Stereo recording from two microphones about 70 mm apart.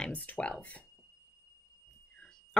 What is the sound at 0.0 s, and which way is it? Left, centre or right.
Speech, left.